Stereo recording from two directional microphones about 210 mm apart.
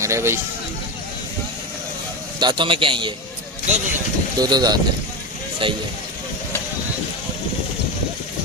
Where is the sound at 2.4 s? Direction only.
20° right (ahead or behind).